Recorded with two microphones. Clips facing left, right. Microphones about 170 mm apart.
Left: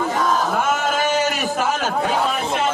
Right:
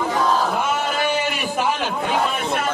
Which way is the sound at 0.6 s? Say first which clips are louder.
Left 2 dB; 45° left (ahead or behind).